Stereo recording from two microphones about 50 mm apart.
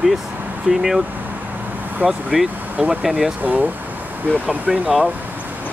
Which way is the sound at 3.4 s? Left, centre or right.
Right.